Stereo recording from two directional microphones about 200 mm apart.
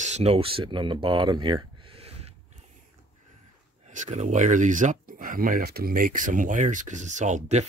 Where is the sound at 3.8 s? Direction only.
35° right (ahead or behind).